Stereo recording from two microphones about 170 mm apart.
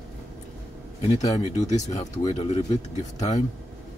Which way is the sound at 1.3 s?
40° left (ahead or behind).